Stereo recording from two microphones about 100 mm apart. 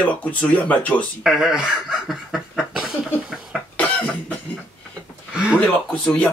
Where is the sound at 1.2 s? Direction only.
5° right (ahead or behind).